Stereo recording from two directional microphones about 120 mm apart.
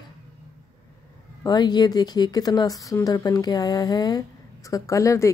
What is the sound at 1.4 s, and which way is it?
A woman's voice, 35° left (ahead or behind).